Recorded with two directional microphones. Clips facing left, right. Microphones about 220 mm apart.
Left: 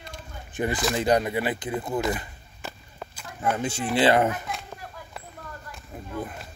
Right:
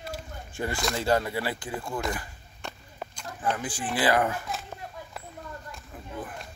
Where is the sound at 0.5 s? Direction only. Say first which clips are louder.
Left 4 dB; 20° left (ahead or behind).